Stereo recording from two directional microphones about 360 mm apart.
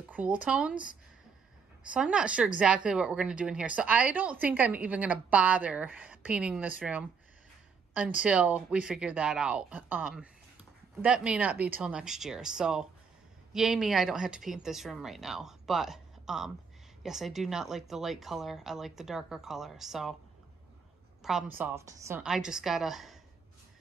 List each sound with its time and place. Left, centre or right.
0.1 s a woman's voice: centre
1.9 s a woman's voice: centre
8.2 s a woman's voice: centre
21.2 s a woman's voice: centre